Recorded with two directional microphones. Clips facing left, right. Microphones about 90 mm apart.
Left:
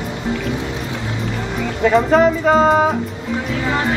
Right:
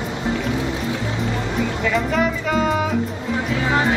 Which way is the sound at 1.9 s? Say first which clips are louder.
Left 9 dB; 40° left (ahead or behind).